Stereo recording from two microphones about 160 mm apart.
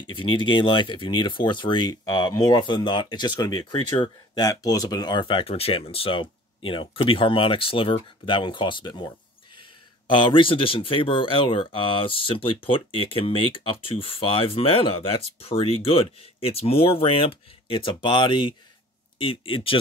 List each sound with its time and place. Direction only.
0.1 s speech: 30° left (ahead or behind)